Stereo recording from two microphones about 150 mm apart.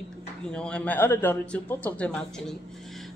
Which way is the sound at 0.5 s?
5° left (ahead or behind).